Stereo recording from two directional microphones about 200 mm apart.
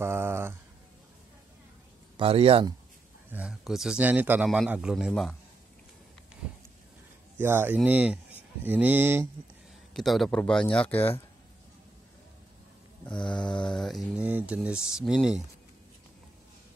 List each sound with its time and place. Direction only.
0.0 s speech: 10° right (ahead or behind)
2.1 s speech: 30° right (ahead or behind)
3.3 s a man's voice: 5° right (ahead or behind)
7.3 s speech: 10° right (ahead or behind)
9.9 s a man's voice: centre (ahead or behind)
13.1 s mantra: 25° left (ahead or behind)
13.7 s a man's voice: centre (ahead or behind)